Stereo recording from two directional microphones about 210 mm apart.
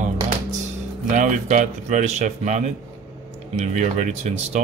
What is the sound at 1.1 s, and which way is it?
Speech, 35° right (ahead or behind).